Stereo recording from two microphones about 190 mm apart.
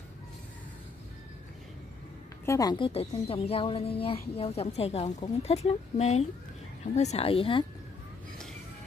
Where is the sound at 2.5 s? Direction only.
20° left (ahead or behind).